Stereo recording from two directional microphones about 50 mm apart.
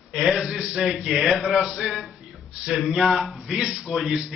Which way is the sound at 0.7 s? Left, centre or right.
Centre.